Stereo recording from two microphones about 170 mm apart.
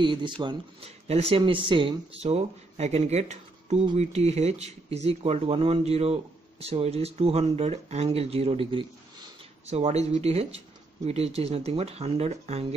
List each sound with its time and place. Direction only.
0.0 s speech: 30° right (ahead or behind)